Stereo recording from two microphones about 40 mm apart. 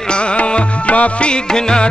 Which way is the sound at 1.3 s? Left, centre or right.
Left.